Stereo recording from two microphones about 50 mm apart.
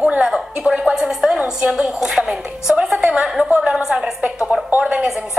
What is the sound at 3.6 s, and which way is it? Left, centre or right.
A woman's voice, centre.